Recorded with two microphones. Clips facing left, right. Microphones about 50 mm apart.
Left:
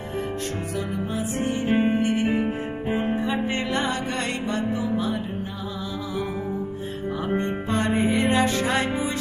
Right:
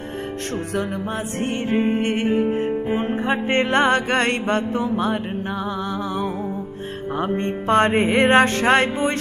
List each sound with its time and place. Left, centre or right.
0.7 s music: right
7.2 s music: right